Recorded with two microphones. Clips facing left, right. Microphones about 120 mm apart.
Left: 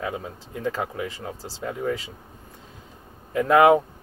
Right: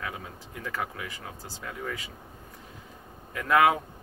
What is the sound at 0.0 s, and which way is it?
Speech, 30° left (ahead or behind).